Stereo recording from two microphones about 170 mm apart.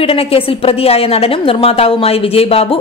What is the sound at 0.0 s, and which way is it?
A woman's voice, 35° left (ahead or behind).